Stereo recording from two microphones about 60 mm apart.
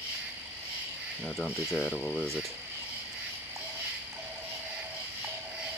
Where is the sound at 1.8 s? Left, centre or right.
Left.